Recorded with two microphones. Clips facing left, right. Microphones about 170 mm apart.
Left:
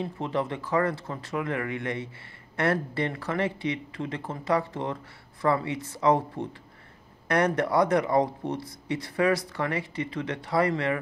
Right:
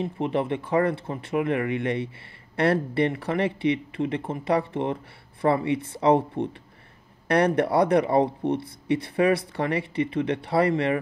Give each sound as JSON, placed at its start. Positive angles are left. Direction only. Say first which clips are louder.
{"t": 0.0, "sound": "speech", "louder": "right 3 dB", "side_deg": -25}